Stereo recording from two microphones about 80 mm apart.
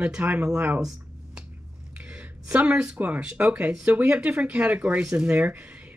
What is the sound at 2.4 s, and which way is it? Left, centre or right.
Speech, centre.